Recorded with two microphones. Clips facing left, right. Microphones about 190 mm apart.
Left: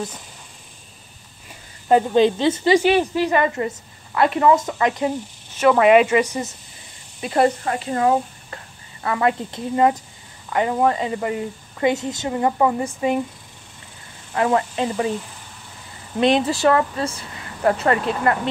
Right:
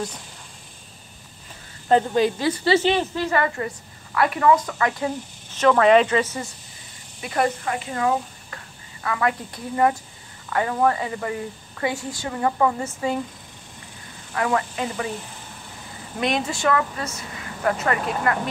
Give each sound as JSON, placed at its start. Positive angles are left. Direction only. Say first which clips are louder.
{"t": 2.1, "sound": "a woman's voice", "louder": "left 4 dB", "side_deg": 25}
{"t": 7.2, "sound": "speech", "louder": "left 5 dB", "side_deg": 25}
{"t": 7.6, "sound": "a woman's voice", "louder": "left 4 dB", "side_deg": 40}
{"t": 14.3, "sound": "a woman's voice", "louder": "left 4 dB", "side_deg": 30}
{"t": 16.2, "sound": "speech", "louder": "left 7 dB", "side_deg": 30}